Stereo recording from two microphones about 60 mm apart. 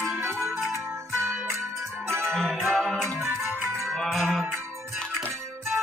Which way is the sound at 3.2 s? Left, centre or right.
Right.